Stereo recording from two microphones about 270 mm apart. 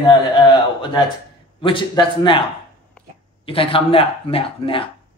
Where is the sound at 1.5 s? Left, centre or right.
Centre.